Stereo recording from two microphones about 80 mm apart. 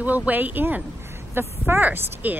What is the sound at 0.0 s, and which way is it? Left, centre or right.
A woman's voice, centre.